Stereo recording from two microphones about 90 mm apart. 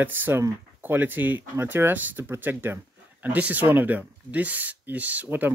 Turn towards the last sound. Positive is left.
turn(degrees=-20)  # may be behind; listen again after turning